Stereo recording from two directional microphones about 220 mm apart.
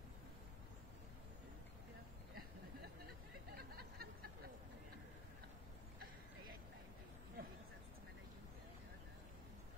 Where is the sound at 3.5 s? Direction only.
45° right (ahead or behind).